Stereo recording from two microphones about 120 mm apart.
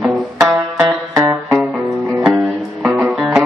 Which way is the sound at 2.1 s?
5° right (ahead or behind).